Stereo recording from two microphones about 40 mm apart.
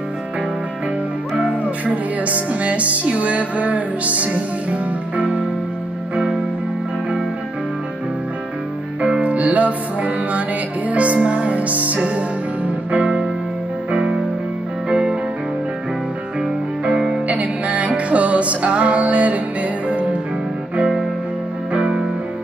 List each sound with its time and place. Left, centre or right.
1.3 s music: right
6.1 s music: centre
9.2 s music: right
13.0 s music: right
16.8 s music: right
17.3 s music: right
21.7 s music: right